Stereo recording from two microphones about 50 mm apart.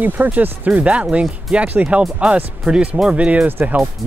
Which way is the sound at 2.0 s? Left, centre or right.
Centre.